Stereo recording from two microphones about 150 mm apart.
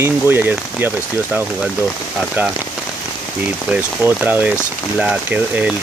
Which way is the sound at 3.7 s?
10° right (ahead or behind).